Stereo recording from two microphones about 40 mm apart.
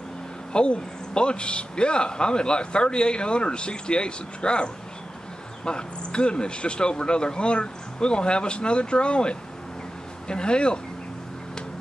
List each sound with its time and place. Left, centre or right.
0.5 s speech: left
5.7 s speech: left